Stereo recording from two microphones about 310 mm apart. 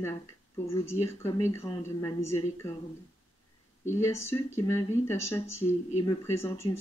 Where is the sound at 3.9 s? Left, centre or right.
Centre.